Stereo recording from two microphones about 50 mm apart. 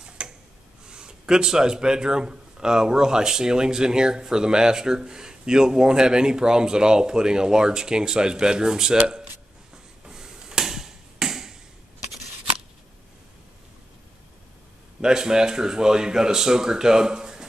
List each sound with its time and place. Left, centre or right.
0.2 s tick-tock: right
0.8 s speech: centre
10.0 s a sound: centre
15.0 s speech: centre